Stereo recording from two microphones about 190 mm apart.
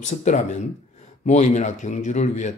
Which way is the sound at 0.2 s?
40° left (ahead or behind).